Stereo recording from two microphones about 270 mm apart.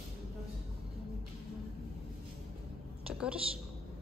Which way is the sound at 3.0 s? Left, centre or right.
Centre.